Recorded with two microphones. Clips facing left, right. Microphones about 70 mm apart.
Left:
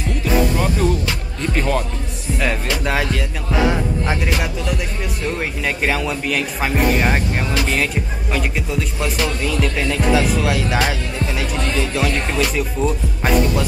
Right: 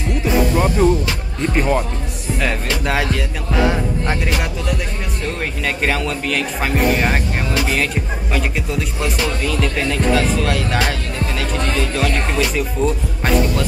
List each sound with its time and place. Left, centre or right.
0.2 s music: right
1.5 s speech: centre
2.3 s speech: centre